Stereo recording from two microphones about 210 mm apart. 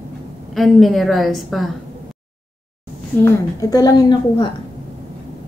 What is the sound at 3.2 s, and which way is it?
A woman's voice, 15° left (ahead or behind).